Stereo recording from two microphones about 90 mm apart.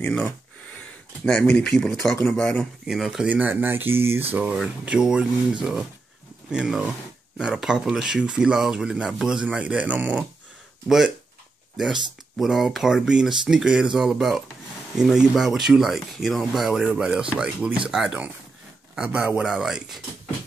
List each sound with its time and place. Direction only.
0.7 s speech: 10° left (ahead or behind)
2.9 s speech: 5° right (ahead or behind)
3.3 s speech: 20° right (ahead or behind)
4.3 s speech: 15° right (ahead or behind)